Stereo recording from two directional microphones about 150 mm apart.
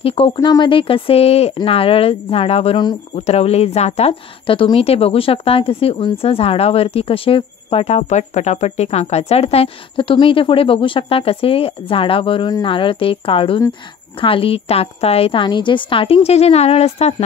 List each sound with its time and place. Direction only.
0.0 s a woman's voice: 40° left (ahead or behind)
0.4 s a woman's voice: 30° left (ahead or behind)